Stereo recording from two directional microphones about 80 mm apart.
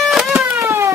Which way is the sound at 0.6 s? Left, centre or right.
Right.